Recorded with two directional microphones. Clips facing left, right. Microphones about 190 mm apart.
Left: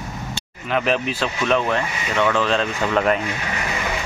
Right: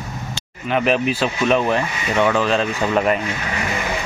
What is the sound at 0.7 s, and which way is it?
Speech, 5° right (ahead or behind).